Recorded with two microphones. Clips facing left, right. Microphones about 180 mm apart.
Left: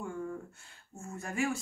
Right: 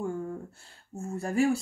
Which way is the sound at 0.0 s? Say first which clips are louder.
Right 5 dB; 35° right (ahead or behind).